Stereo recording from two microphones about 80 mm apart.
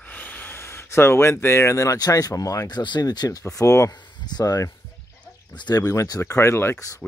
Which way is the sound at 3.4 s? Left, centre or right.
Left.